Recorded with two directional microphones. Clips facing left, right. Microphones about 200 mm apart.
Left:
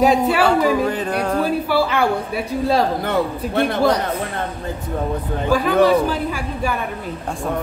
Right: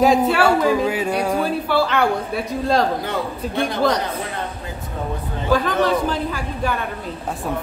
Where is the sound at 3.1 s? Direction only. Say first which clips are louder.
Left 4 dB; 60° left (ahead or behind).